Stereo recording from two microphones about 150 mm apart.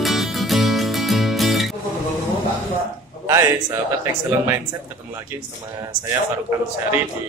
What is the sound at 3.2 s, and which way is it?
Speech, 20° right (ahead or behind).